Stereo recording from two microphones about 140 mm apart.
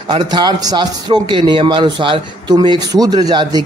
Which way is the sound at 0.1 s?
35° right (ahead or behind).